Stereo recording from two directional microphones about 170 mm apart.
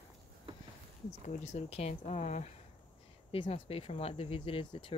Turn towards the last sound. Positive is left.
turn(degrees=35)  # may be behind; listen again after turning